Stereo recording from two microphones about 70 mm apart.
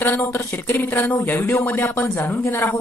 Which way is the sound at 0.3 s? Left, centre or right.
Left.